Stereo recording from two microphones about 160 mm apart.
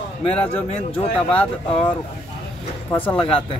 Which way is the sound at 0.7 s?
35° left (ahead or behind).